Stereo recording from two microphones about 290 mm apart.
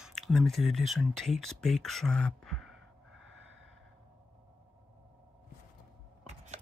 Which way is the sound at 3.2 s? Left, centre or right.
Right.